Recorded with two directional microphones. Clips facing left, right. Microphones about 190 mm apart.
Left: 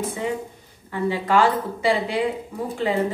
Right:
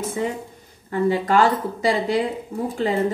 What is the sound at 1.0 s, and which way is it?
A woman's voice, 45° right (ahead or behind).